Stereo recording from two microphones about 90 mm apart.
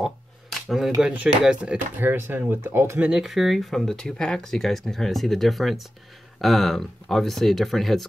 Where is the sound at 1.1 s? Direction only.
10° right (ahead or behind).